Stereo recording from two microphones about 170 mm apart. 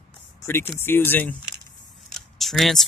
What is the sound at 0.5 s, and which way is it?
Speech, 15° left (ahead or behind).